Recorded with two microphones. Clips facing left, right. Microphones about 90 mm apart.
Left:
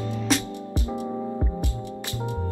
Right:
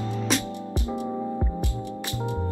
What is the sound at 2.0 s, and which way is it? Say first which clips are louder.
Music: right 1 dB; 20° right (ahead or behind).